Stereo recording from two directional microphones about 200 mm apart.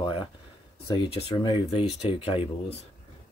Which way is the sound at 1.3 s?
25° left (ahead or behind).